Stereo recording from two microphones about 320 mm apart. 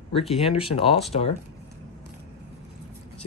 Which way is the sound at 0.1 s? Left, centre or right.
Centre.